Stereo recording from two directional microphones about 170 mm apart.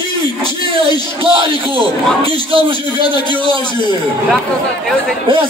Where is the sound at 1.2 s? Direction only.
30° right (ahead or behind).